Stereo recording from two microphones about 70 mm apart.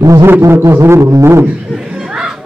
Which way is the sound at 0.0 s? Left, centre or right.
Right.